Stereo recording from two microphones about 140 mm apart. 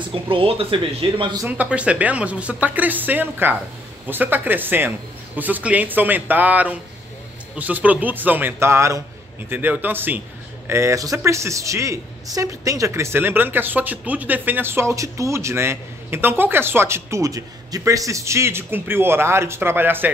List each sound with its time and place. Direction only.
0.1 s speech: 40° right (ahead or behind)
1.4 s a woman's voice: 10° right (ahead or behind)